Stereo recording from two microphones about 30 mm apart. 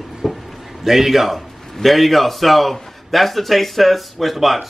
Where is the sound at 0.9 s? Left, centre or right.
Centre.